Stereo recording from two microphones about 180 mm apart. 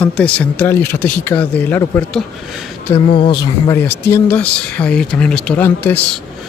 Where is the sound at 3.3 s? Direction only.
20° left (ahead or behind).